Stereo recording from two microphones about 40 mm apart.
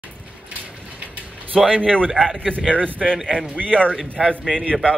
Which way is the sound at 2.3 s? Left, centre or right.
Right.